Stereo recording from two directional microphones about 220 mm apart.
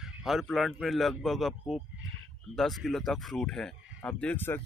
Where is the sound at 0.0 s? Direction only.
Centre (ahead or behind).